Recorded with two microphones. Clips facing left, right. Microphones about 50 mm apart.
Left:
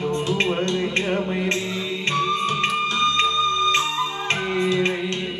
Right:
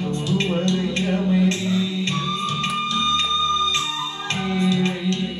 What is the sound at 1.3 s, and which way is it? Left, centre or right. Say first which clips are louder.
Music: right 4 dB; left.